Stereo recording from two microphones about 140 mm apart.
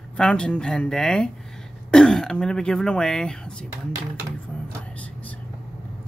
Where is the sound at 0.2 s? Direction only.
5° left (ahead or behind).